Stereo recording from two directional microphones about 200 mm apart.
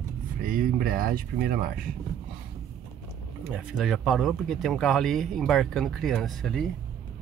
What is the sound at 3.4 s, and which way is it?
Speech, 5° right (ahead or behind).